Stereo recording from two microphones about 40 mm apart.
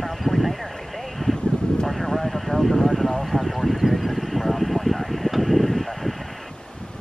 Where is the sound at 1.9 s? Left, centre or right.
Centre.